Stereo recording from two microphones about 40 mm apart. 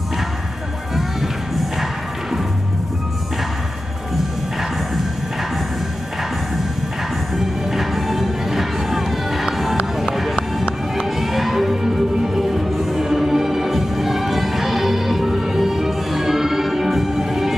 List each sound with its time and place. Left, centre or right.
0.9 s music: centre
7.3 s music: centre